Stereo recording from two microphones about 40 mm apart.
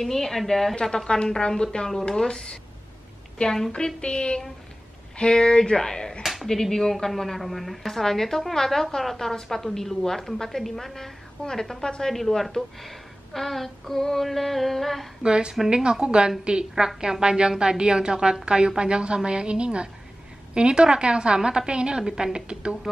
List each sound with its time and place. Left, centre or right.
0.0 s female singing: centre
0.7 s a woman's voice: centre
3.7 s speech: left
6.2 s a sound: centre
6.5 s a woman's voice: centre
11.4 s a woman's voice: left
12.4 s female singing: centre
15.2 s a woman's voice: right